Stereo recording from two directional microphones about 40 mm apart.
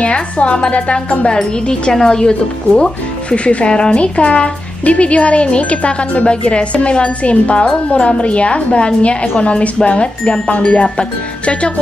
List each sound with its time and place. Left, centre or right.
0.0 s speech: left
1.3 s speech: centre